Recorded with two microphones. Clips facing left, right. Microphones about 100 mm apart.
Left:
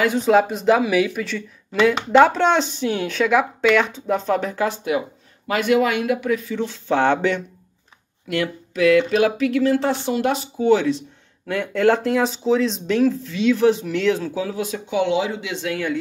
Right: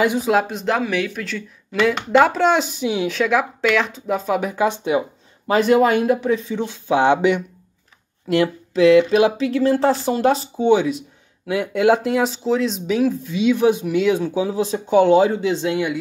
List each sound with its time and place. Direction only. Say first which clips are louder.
0.2 s speech: left 2 dB; centre (ahead or behind); by 5.0 s 20° right (ahead or behind)
5.5 s speech: right 4 dB; 35° right (ahead or behind); by 7.4 s 15° right (ahead or behind)
8.3 s speech: right 5 dB; 30° right (ahead or behind)
10.7 s speech: right 1 dB; 15° right (ahead or behind)
14.9 s speech: right 7 dB; 45° right (ahead or behind); by 15.9 s 25° right (ahead or behind)